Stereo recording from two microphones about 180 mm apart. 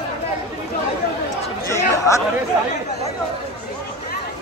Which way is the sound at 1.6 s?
15° left (ahead or behind).